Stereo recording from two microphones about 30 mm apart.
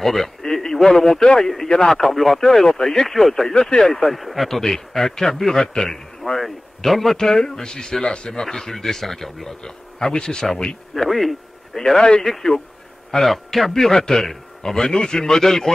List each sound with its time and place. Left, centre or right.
0.0 s speech: centre
2.4 s a man's voice: centre
7.2 s speech: centre
9.6 s speech: left
11.1 s speech: centre
12.2 s speech: centre
13.9 s a man's voice: left